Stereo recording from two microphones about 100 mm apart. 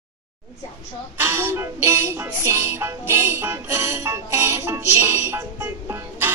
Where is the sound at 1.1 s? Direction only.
20° right (ahead or behind).